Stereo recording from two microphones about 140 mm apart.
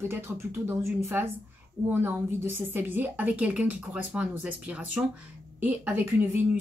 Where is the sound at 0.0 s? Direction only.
15° right (ahead or behind).